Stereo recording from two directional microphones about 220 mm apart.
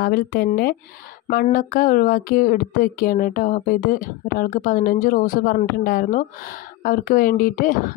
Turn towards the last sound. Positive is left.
turn(degrees=40)  # may be behind; listen again after turning